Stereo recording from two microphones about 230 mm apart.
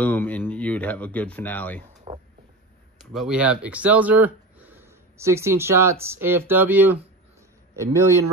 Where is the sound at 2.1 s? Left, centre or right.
Right.